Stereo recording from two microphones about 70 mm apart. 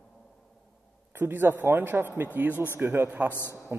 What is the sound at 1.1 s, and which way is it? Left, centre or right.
A man's voice, right.